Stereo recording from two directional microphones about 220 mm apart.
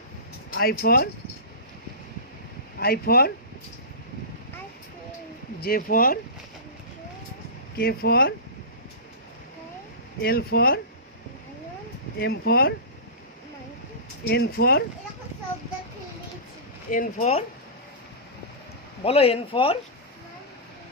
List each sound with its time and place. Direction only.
0.5 s speech: 45° left (ahead or behind)
2.8 s speech: 45° left (ahead or behind)
5.6 s speech: 40° left (ahead or behind)
7.7 s speech: 45° left (ahead or behind)
10.2 s speech: 45° left (ahead or behind)
12.2 s speech: 45° left (ahead or behind)
14.2 s speech: 45° left (ahead or behind)
16.9 s speech: 35° left (ahead or behind)
19.0 s speech: 25° left (ahead or behind)